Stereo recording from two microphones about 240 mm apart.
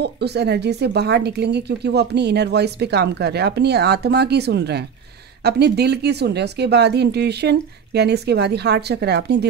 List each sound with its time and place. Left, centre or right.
0.0 s a woman's voice: right